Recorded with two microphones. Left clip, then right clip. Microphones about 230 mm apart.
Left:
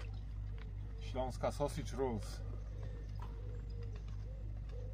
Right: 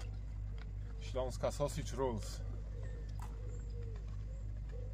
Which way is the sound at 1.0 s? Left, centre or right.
Right.